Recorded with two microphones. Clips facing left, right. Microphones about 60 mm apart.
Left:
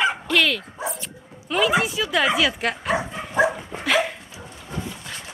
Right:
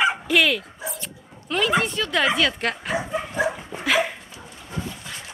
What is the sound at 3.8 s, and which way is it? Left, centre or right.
Dog, centre.